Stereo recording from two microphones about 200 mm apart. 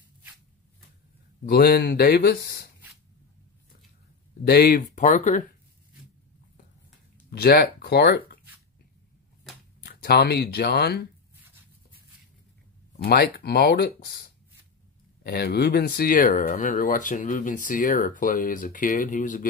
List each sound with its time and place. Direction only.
1.5 s speech: 50° left (ahead or behind)
4.5 s speech: 50° left (ahead or behind)
7.2 s speech: 50° left (ahead or behind)
9.8 s speech: 55° left (ahead or behind)
13.0 s speech: 50° left (ahead or behind)
15.2 s speech: 55° left (ahead or behind)